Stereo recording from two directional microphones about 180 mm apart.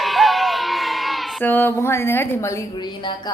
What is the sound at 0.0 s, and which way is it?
Music, centre (ahead or behind).